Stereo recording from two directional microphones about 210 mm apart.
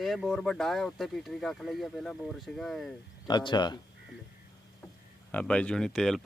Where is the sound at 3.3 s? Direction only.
20° left (ahead or behind).